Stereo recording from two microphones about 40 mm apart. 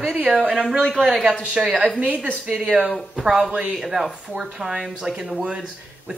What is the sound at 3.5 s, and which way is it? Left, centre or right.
Speech, right.